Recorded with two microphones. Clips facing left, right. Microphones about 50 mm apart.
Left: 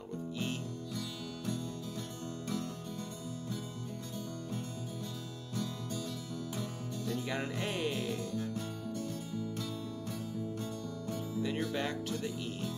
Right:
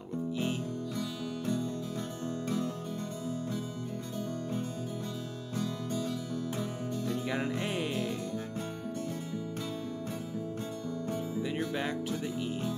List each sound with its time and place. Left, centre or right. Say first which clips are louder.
0.9 s music: right 5 dB; right
5.6 s music: right 5 dB; right
7.2 s music: right 2 dB; centre
8.0 s music: right 2 dB; right
11.7 s music: right 2 dB; centre